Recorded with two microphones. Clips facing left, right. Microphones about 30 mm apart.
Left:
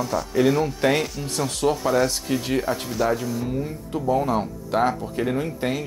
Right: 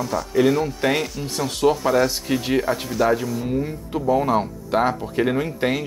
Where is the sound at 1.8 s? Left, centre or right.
Centre.